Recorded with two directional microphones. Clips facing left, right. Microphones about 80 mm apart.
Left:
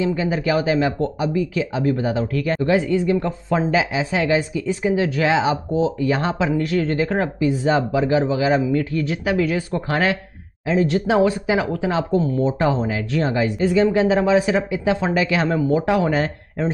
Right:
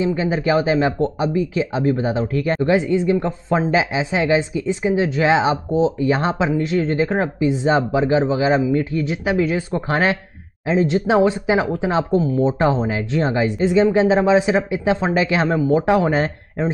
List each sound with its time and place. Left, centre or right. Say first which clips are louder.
0.0 s a woman's voice: right 1 dB; right